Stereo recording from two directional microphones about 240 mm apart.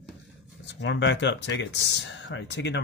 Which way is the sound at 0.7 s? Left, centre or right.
Left.